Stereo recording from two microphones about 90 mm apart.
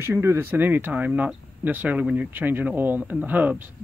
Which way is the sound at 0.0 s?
25° right (ahead or behind).